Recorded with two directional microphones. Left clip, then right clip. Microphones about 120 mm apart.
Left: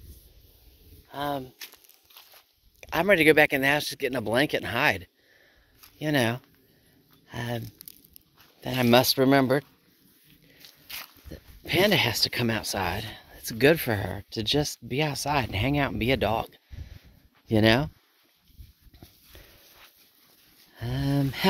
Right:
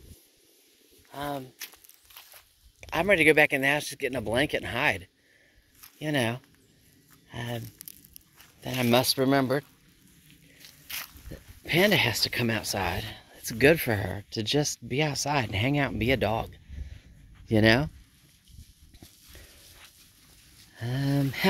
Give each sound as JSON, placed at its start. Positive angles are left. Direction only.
{"t": 1.1, "sound": "speech", "side_deg": 85}
{"t": 2.8, "sound": "a sound", "side_deg": 40}
{"t": 3.2, "sound": "speech", "side_deg": 40}
{"t": 5.9, "sound": "speech", "side_deg": 55}
{"t": 7.6, "sound": "crumpling", "side_deg": 0}
{"t": 8.5, "sound": "speech", "side_deg": 45}
{"t": 8.8, "sound": "speech", "side_deg": 80}
{"t": 10.9, "sound": "dog", "side_deg": -5}
{"t": 11.2, "sound": "speech", "side_deg": 20}
{"t": 17.5, "sound": "speech", "side_deg": 5}
{"t": 19.3, "sound": "horse", "side_deg": 15}
{"t": 20.7, "sound": "speech", "side_deg": 10}